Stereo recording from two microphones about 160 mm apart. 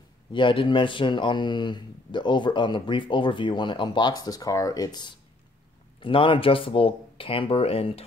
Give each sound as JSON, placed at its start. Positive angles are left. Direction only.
{"t": 0.3, "sound": "speech", "side_deg": 30}